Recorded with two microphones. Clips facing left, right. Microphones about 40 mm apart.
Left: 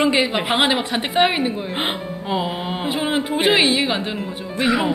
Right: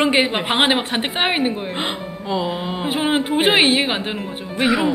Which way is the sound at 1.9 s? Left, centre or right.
Centre.